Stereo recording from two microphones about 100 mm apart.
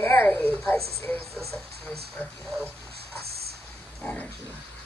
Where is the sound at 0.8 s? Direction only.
90° right.